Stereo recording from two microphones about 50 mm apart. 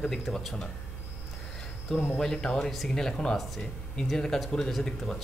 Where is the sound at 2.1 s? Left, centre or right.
Centre.